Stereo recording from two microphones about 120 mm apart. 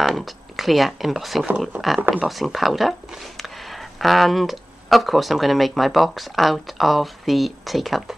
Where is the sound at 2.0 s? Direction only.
15° right (ahead or behind).